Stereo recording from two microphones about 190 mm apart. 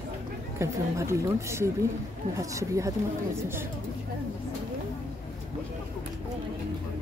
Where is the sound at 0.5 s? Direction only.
15° right (ahead or behind).